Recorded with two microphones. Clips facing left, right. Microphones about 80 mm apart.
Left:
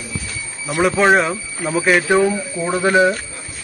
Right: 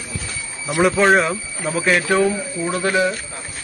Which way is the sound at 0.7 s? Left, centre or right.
Centre.